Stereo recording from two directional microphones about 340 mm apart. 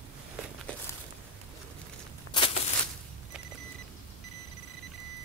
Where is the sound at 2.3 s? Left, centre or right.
Centre.